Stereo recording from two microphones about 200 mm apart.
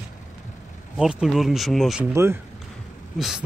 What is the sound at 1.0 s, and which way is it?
Speech, 5° right (ahead or behind).